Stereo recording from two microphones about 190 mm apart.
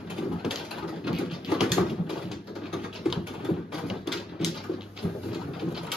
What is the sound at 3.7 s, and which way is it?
Typewriter, centre (ahead or behind).